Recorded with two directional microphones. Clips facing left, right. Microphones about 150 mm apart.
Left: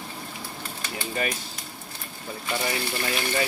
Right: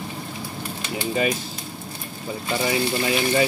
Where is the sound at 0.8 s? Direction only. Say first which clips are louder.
Right 6 dB; 20° right (ahead or behind).